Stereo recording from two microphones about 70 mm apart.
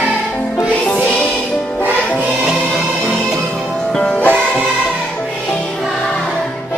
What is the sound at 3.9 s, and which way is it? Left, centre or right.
Music, centre.